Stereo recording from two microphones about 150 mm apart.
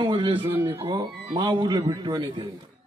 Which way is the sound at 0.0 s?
35° right (ahead or behind).